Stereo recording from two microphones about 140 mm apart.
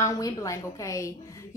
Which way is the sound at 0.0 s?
25° left (ahead or behind).